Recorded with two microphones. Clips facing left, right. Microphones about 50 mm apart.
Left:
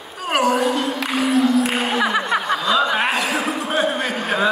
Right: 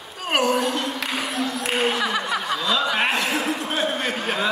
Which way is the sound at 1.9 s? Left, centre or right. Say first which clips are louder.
Left 5 dB; left.